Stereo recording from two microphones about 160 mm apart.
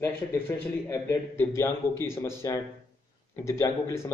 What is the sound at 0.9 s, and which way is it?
A man's voice, 15° left (ahead or behind).